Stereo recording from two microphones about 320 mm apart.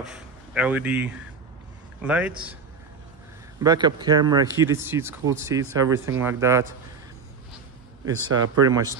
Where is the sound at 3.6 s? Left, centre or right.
Centre.